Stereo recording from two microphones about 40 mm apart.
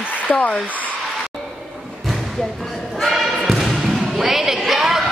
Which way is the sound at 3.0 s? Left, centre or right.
Centre.